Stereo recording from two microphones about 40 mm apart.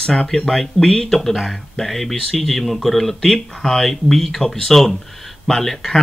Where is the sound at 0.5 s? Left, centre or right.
Centre.